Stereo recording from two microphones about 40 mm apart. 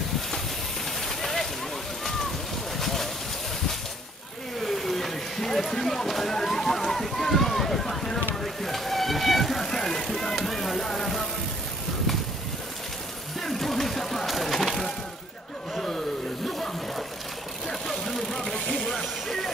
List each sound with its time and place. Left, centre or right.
1.0 s a sound: centre
2.8 s boat: centre
4.6 s run: centre
8.4 s vehicle: centre
10.0 s music: centre
13.4 s a sound: centre
17.8 s vehicle: centre